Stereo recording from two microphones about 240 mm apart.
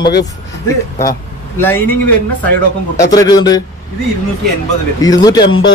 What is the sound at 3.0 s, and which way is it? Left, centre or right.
Speech, centre.